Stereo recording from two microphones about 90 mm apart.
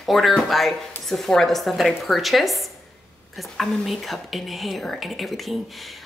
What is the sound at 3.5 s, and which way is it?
Speech, centre (ahead or behind).